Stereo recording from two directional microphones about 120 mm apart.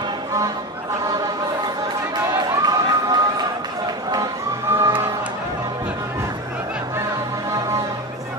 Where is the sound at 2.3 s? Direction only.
35° right (ahead or behind).